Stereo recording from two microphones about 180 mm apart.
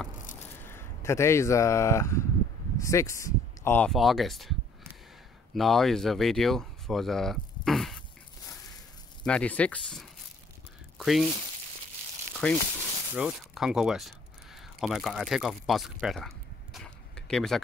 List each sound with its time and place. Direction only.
0.6 s speech: 15° left (ahead or behind)
9.2 s speech: 5° left (ahead or behind)
12.4 s speech: 5° left (ahead or behind)